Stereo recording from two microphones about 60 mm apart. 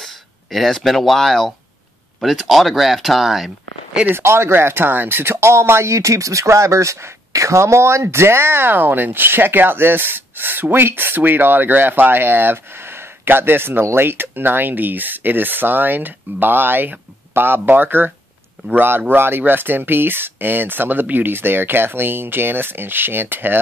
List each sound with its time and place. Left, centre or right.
0.0 s speech: centre
4.1 s speech: right